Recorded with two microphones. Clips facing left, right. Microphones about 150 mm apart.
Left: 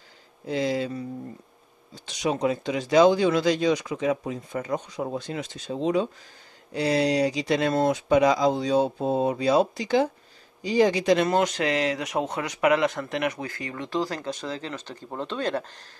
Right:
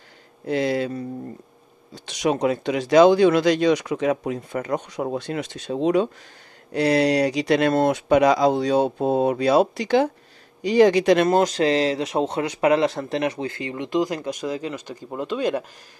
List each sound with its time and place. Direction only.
0.5 s speech: 65° right (ahead or behind)
11.2 s speech: 35° right (ahead or behind); by 15.6 s 10° right (ahead or behind)